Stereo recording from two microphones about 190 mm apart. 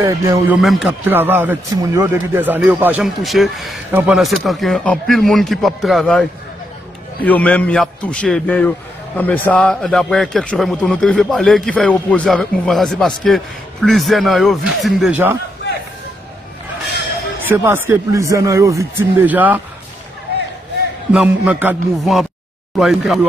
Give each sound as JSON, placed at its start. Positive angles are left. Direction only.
{"t": 0.0, "sound": "speech", "side_deg": -15}
{"t": 0.6, "sound": "a man's voice", "side_deg": 0}
{"t": 7.2, "sound": "a man's voice", "side_deg": 10}
{"t": 17.5, "sound": "speech", "side_deg": -10}
{"t": 21.1, "sound": "a man's voice", "side_deg": -5}